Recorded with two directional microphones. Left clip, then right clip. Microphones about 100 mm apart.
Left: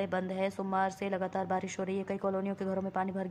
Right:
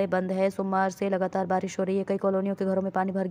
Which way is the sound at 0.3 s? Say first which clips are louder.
Right 7 dB; 35° right (ahead or behind).